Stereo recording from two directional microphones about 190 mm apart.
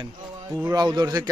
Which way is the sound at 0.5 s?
20° right (ahead or behind).